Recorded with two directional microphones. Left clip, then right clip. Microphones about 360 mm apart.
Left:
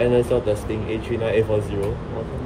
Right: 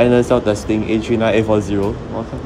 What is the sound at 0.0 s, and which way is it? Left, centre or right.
Speech, right.